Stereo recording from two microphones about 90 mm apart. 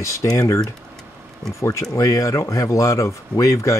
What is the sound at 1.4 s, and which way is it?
Speech, 35° right (ahead or behind).